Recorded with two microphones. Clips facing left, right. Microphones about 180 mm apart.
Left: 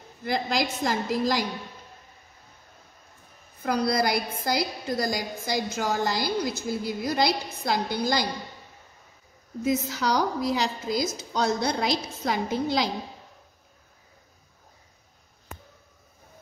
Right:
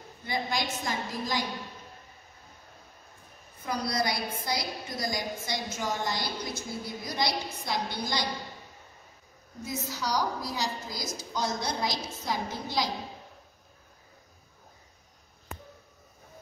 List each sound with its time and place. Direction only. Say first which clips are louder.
0.2 s a woman's voice: left 5 dB; 90° left
3.6 s a woman's voice: left 6 dB; 65° left (ahead or behind)
9.7 s a woman's voice: left 8 dB; 65° left (ahead or behind)